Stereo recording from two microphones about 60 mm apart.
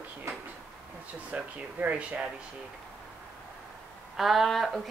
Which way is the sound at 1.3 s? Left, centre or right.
Right.